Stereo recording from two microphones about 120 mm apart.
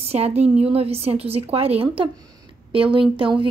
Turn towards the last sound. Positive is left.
turn(degrees=-45)  # may be behind; listen again after turning